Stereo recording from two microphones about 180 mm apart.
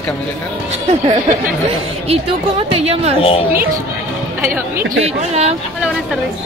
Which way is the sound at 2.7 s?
35° right (ahead or behind).